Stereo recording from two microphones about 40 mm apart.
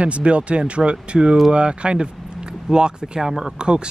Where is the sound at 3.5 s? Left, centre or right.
Right.